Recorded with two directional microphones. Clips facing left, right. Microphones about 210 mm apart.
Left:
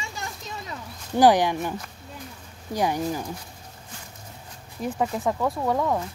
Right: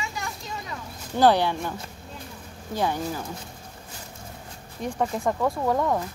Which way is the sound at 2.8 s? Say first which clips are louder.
Left 2 dB; 15° left (ahead or behind).